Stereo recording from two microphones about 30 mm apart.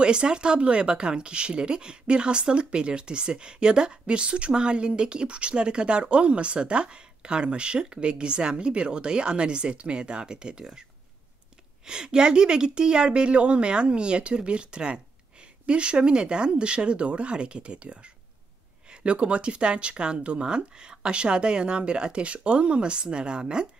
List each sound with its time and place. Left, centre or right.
0.0 s a woman's voice: right
11.8 s a woman's voice: right
19.0 s a woman's voice: right